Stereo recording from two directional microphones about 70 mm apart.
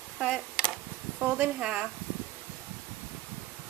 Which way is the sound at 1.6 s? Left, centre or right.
Centre.